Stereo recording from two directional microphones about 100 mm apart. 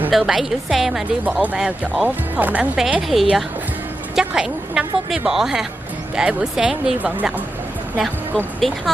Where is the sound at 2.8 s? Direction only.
5° right (ahead or behind).